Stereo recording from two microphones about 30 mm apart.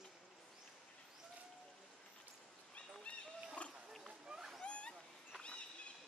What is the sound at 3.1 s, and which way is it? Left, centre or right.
Pig, left.